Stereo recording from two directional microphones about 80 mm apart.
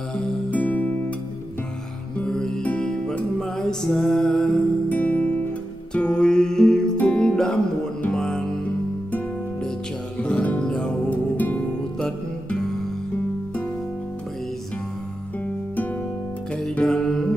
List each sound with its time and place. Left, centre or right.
0.1 s music: centre
2.1 s music: centre
4.8 s music: centre
10.2 s music: centre
15.4 s music: left
16.8 s music: centre